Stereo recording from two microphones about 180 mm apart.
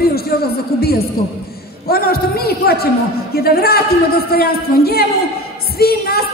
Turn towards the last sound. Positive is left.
turn(degrees=60)  # may be behind; listen again after turning